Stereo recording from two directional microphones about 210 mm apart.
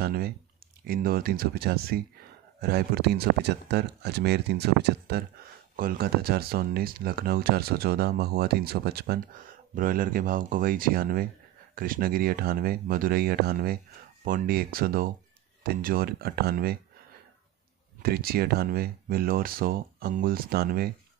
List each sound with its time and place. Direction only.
0.0 s speech: 45° right (ahead or behind)
18.0 s speech: 45° right (ahead or behind)